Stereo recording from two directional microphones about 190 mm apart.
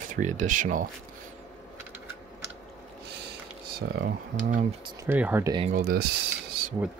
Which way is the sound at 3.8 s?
60° right (ahead or behind).